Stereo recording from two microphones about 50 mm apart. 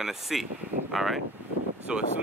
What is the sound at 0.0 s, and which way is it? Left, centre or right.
Speech, centre.